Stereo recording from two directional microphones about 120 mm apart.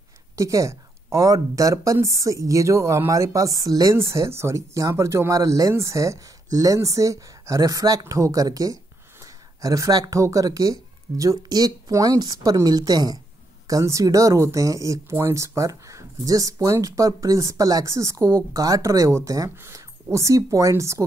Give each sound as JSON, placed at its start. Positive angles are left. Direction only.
{"t": 0.4, "sound": "speech", "side_deg": -25}